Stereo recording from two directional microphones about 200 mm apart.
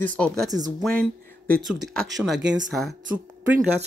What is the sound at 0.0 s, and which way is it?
Speech, 5° left (ahead or behind).